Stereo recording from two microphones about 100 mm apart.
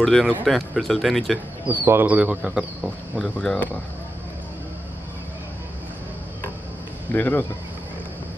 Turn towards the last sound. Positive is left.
turn(degrees=20)  # may be behind; listen again after turning